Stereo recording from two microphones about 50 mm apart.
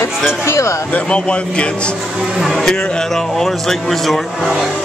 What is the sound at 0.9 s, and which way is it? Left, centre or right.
Speech, left.